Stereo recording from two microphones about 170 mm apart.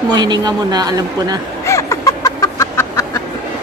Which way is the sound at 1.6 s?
20° left (ahead or behind).